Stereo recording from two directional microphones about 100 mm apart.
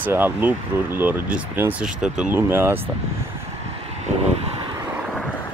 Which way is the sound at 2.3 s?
25° right (ahead or behind).